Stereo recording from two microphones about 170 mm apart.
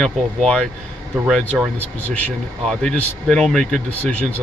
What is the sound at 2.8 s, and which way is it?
Speech, centre (ahead or behind).